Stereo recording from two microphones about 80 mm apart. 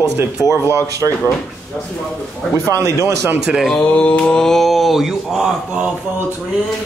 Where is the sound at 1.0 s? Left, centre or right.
Right.